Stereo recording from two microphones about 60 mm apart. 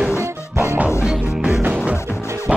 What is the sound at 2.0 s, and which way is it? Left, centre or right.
Music, left.